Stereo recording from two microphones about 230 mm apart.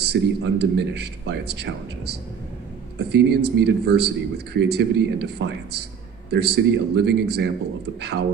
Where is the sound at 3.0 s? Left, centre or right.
Right.